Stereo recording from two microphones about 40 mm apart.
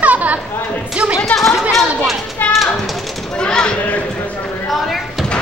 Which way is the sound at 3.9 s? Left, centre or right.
Left.